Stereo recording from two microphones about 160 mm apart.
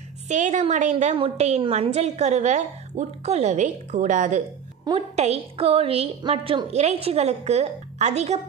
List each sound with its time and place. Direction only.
0.3 s a woman's voice: 50° right (ahead or behind)
1.1 s a woman's voice: 40° right (ahead or behind)